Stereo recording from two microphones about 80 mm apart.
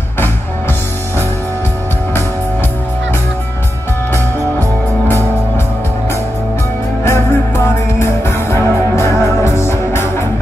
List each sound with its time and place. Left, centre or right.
7.1 s music: left